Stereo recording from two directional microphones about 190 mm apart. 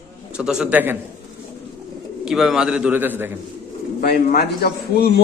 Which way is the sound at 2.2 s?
Centre (ahead or behind).